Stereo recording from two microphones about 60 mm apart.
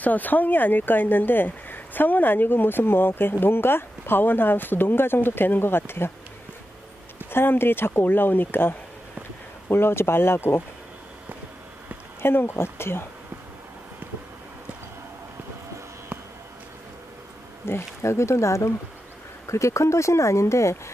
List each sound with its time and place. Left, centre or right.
0.0 s speech: left
7.2 s speech: left
12.2 s speech: left
17.6 s speech: left